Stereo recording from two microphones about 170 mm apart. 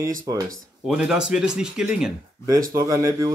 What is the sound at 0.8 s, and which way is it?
Speech, 5° right (ahead or behind).